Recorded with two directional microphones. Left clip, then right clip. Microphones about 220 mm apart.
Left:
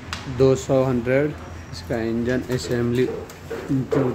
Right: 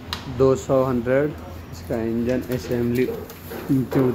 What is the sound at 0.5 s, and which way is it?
Speech, 20° left (ahead or behind).